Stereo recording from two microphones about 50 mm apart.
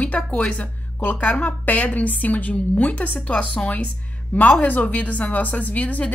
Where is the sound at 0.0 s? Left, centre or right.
Left.